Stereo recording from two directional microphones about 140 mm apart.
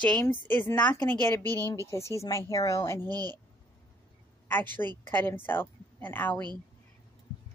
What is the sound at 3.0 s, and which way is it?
Speech, 30° right (ahead or behind).